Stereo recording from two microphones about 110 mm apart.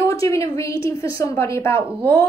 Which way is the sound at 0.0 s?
30° left (ahead or behind).